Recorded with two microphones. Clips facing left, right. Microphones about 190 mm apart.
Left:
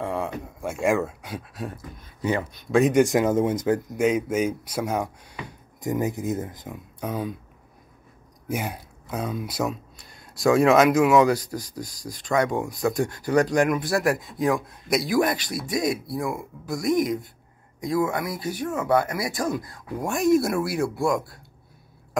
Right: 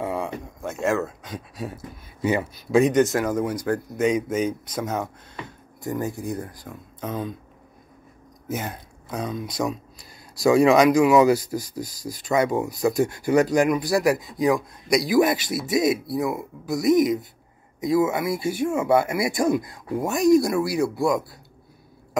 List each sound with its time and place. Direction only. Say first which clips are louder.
0.0 s a sound: right 1 dB; centre (ahead or behind)
0.6 s speech: left 1 dB; 10° left (ahead or behind)
2.9 s speech: left 1 dB; 15° left (ahead or behind)
4.0 s speech: right 1 dB; 5° left (ahead or behind)
8.5 s speech: left 1 dB; 10° left (ahead or behind); by 20.1 s 15° right (ahead or behind)
20.1 s speech: right 2 dB; centre (ahead or behind)